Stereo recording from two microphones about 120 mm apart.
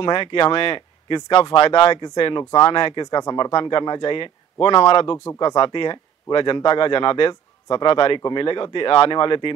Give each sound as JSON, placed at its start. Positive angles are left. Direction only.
{"t": 0.0, "sound": "speech", "side_deg": 45}